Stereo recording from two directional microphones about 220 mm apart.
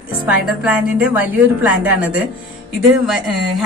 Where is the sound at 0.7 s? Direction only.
5° right (ahead or behind).